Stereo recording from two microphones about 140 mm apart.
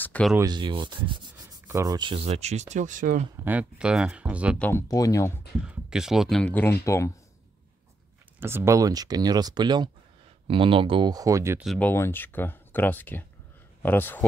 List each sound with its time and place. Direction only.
0.0 s speech: 10° left (ahead or behind)
0.4 s speech: 30° right (ahead or behind)
1.7 s rub: 20° right (ahead or behind)
2.0 s speech: 40° right (ahead or behind); by 3.3 s 65° right (ahead or behind)
3.4 s speech: 10° right (ahead or behind)
4.6 s speech: 15° left (ahead or behind)
4.8 s speech: 25° left (ahead or behind)
5.7 s speech: 5° right (ahead or behind); by 7.1 s 20° left (ahead or behind)
8.4 s speech: 15° right (ahead or behind)
11.8 s speech: 15° left (ahead or behind)